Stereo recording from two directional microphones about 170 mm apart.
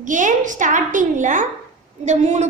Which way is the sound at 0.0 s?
50° right (ahead or behind).